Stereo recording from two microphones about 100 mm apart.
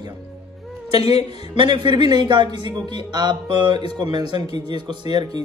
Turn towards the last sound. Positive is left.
turn(degrees=-45)  # may be behind; listen again after turning